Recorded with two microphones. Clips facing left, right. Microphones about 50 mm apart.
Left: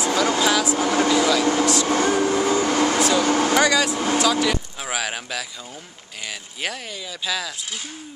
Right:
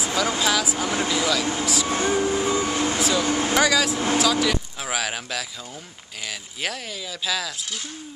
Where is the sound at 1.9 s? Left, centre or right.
Left.